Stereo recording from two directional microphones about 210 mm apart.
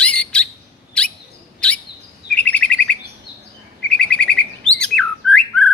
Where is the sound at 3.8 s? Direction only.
5° left (ahead or behind).